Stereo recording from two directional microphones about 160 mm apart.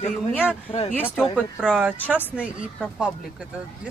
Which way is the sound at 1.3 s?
5° right (ahead or behind).